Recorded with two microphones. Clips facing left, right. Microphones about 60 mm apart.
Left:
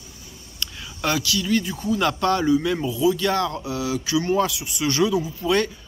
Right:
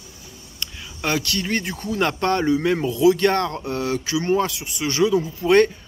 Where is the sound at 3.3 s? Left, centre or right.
Right.